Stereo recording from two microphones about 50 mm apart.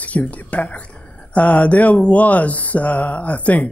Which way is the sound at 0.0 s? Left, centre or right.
Left.